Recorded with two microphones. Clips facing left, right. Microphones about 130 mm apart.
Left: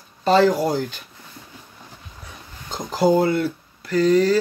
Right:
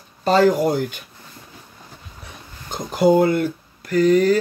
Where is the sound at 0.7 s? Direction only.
55° right (ahead or behind).